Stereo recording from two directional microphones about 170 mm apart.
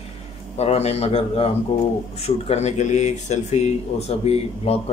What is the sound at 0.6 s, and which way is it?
Speech, 40° left (ahead or behind).